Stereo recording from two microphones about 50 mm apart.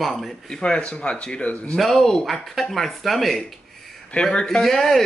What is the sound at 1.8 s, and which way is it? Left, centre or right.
Speech, centre.